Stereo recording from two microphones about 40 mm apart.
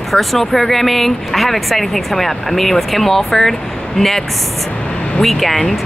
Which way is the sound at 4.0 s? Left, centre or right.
Centre.